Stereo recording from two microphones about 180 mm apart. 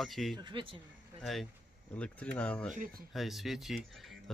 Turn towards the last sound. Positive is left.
turn(degrees=0)  # may be behind; listen again after turning